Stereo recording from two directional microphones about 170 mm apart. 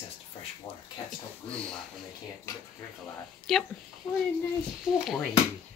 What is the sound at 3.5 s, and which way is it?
Speech, centre (ahead or behind).